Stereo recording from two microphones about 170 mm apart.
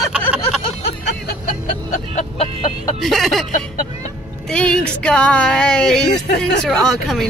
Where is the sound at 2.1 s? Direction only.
40° left (ahead or behind).